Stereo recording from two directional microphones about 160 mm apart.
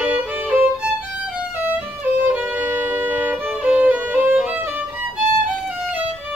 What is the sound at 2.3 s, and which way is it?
Music, 10° right (ahead or behind).